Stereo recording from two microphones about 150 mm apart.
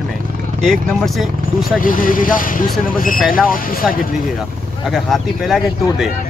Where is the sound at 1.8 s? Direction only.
65° left (ahead or behind).